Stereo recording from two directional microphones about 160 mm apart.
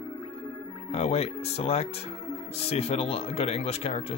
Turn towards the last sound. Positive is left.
turn(degrees=40)  # may be behind; listen again after turning